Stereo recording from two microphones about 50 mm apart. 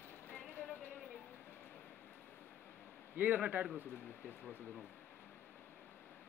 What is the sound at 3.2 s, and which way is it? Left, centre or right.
Speech, right.